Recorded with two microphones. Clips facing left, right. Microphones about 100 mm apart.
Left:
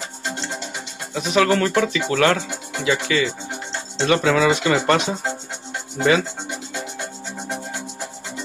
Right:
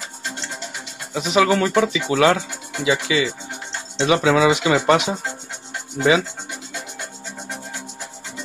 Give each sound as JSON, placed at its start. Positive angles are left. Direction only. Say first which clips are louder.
{"t": 1.1, "sound": "speech", "louder": "right 1 dB", "side_deg": -15}